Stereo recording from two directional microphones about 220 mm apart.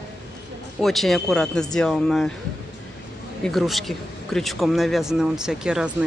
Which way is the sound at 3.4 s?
Centre (ahead or behind).